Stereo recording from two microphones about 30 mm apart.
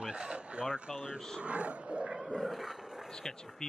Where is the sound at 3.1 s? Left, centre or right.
Left.